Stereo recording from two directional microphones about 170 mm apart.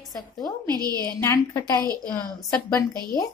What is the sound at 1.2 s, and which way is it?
Speech, 15° left (ahead or behind).